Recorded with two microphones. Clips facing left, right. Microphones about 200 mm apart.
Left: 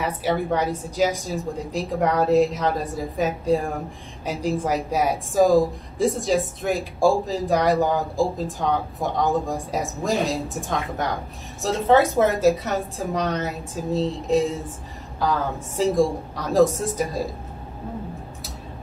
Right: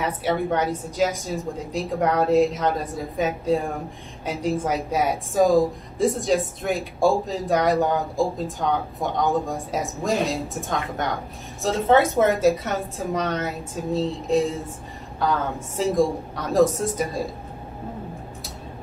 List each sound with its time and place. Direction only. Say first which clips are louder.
0.0 s a woman's voice: even; centre (ahead or behind)